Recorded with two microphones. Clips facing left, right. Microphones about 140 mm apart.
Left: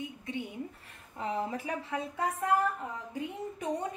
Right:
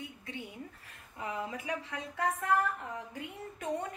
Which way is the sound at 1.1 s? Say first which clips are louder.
Left 4 dB; 30° left (ahead or behind).